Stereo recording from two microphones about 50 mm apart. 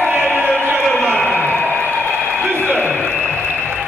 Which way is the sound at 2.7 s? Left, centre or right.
Left.